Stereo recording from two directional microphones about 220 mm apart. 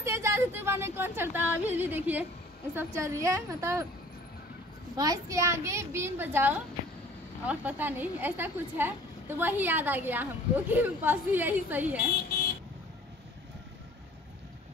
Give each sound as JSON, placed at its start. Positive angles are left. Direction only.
{"t": 0.0, "sound": "music", "side_deg": -10}
{"t": 2.7, "sound": "a woman's voice", "side_deg": -10}
{"t": 4.9, "sound": "a woman's voice", "side_deg": -15}
{"t": 12.1, "sound": "speech", "side_deg": 45}